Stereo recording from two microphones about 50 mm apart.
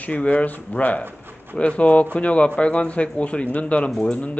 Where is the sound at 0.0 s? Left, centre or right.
Left.